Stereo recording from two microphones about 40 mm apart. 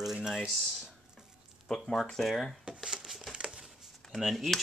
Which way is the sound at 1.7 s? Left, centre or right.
Centre.